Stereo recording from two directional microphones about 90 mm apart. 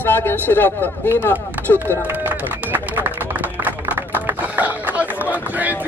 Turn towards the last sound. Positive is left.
turn(degrees=-20)  # may be behind; listen again after turning